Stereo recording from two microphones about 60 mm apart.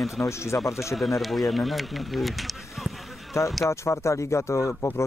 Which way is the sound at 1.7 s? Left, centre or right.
Centre.